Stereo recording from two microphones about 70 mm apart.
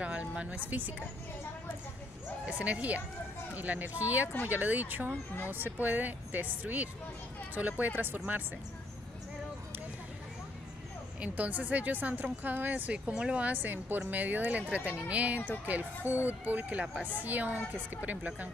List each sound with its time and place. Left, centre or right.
0.0 s speech: centre
2.4 s speech: centre
11.1 s speech: right